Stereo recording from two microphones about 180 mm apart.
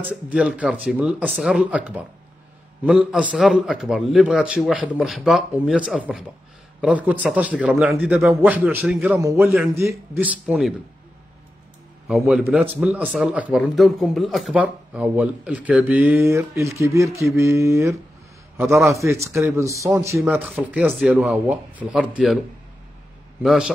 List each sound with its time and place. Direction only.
0.1 s a man's voice: 5° right (ahead or behind)
12.1 s a man's voice: centre (ahead or behind)
18.6 s a man's voice: centre (ahead or behind)
19.3 s speech: 15° right (ahead or behind)
23.4 s a man's voice: centre (ahead or behind)